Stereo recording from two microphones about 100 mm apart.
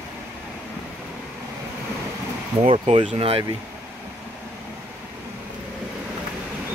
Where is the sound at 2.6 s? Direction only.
80° right.